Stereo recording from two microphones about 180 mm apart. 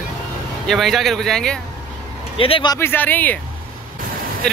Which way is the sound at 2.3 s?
30° left (ahead or behind).